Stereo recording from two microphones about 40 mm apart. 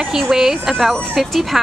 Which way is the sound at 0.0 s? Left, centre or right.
Centre.